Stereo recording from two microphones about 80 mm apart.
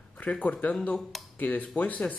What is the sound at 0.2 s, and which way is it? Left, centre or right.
Speech, centre.